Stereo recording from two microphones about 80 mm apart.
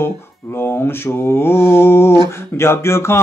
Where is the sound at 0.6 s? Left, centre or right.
Left.